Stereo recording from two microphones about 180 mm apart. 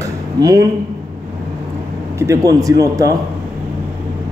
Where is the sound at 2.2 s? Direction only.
15° right (ahead or behind).